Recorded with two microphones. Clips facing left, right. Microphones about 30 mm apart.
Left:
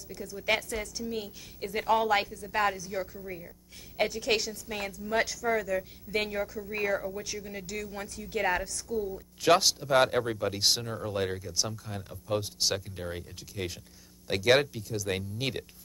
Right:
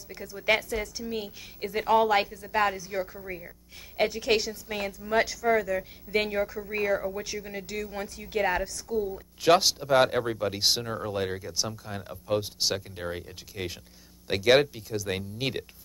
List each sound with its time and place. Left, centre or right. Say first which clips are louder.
0.1 s a woman's voice: right 3 dB; centre
6.7 s speech: right 2 dB; centre
7.1 s a woman's voice: right 3 dB; centre
8.4 s a woman's voice: right 2 dB; centre